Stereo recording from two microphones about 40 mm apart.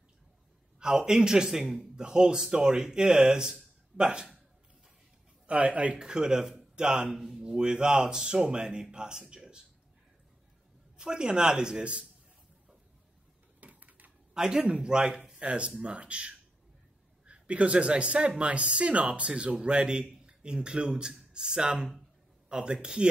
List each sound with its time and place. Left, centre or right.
0.7 s a man's voice: centre
5.5 s speech: right
5.9 s speech: centre
6.4 s a sound: centre
7.1 s a man's voice: centre
7.3 s speech: right
11.0 s speech: right
13.6 s a sound: right
14.3 s speech: centre